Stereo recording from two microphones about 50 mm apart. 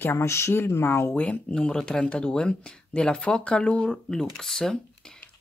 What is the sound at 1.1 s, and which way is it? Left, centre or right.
Speech, left.